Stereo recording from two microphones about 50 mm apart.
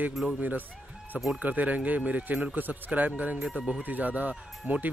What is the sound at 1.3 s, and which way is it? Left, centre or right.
Speech, right.